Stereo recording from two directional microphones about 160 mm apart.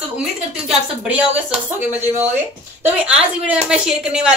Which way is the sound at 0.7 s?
10° right (ahead or behind).